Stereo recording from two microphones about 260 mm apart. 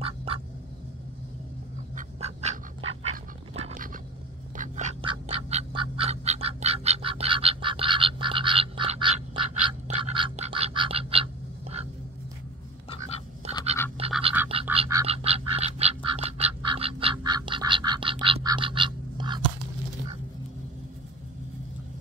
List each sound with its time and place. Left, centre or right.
0.0 s duck: right
2.0 s duck: right
3.5 s a sound: right
4.6 s duck: right
13.4 s a sound: right
14.5 s duck: right